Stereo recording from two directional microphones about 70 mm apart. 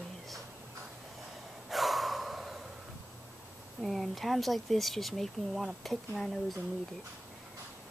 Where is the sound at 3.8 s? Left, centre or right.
Centre.